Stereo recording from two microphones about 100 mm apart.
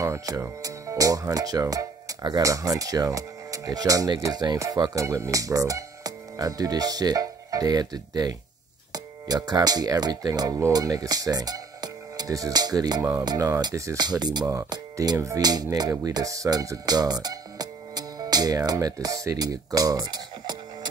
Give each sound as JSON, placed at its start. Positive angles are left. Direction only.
{"t": 0.0, "sound": "speech", "side_deg": -30}
{"t": 15.0, "sound": "speech", "side_deg": -30}